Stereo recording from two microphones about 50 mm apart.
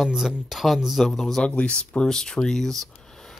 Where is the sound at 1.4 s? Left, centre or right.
Left.